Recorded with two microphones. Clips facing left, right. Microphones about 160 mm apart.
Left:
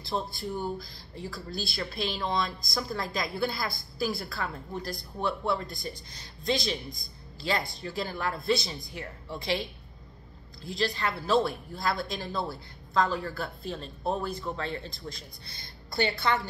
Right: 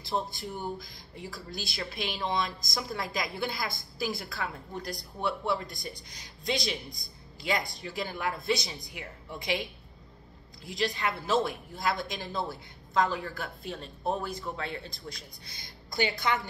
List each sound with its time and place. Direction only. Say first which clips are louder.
0.0 s a woman's voice: even; 15° right (ahead or behind)